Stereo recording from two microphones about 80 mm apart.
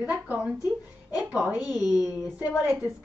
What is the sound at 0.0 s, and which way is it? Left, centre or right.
Speech, right.